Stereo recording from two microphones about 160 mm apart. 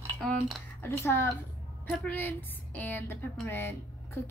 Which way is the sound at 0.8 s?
15° left (ahead or behind).